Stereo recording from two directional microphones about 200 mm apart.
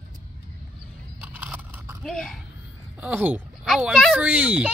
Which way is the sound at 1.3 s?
10° right (ahead or behind).